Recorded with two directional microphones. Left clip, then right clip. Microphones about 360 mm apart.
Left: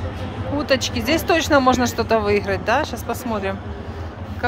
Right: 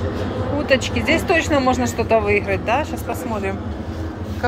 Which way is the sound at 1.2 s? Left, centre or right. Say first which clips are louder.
Left 5 dB; centre.